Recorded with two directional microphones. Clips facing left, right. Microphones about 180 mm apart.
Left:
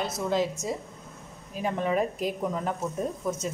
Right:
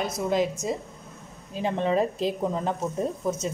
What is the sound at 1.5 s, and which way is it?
Speech, 25° right (ahead or behind).